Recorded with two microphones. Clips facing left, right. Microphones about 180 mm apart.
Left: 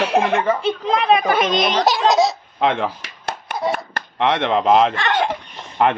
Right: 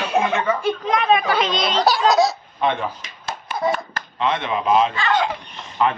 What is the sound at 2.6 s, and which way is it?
Clapping, 90° left.